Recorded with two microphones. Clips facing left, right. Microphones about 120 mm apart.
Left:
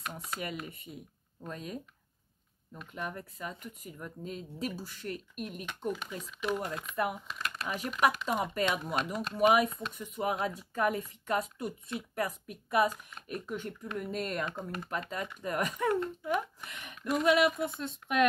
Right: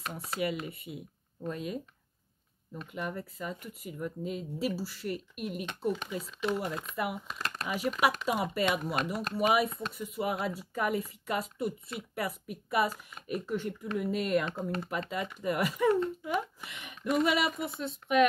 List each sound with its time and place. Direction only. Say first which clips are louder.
0.1 s speech: right 5 dB; 5° right (ahead or behind)
2.9 s speech: right 2 dB; 5° right (ahead or behind)
7.3 s crumpling: right 1 dB; 35° right (ahead or behind)
7.6 s speech: right 1 dB; 5° right (ahead or behind)